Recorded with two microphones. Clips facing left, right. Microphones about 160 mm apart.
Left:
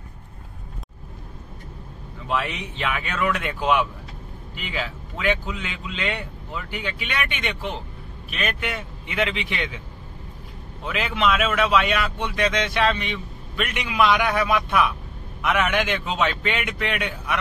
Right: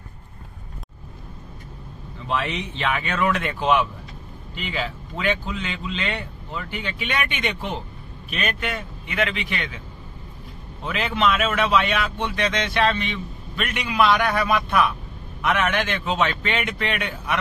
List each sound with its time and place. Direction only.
2.2 s a man's voice: 5° left (ahead or behind)
8.5 s a man's voice: 15° left (ahead or behind)
9.0 s a man's voice: 25° left (ahead or behind)
10.9 s a man's voice: 5° left (ahead or behind)